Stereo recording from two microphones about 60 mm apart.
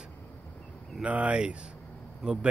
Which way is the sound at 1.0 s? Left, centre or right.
Right.